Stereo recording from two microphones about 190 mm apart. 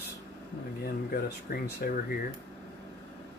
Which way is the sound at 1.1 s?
55° left (ahead or behind).